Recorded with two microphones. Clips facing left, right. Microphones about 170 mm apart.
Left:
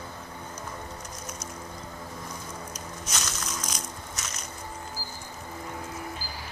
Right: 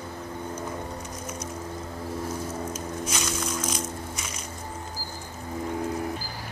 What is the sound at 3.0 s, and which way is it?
Music, 5° right (ahead or behind).